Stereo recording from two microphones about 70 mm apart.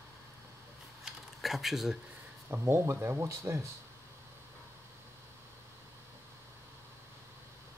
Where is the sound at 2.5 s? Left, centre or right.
Right.